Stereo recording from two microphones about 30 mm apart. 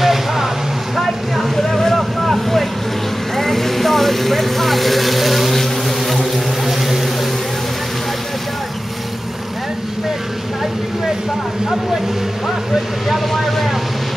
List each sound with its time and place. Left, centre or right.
0.0 s vehicle: centre
5.6 s boat: centre
13.3 s vehicle: centre